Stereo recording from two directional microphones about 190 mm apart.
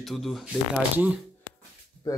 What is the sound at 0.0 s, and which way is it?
Speech, centre (ahead or behind).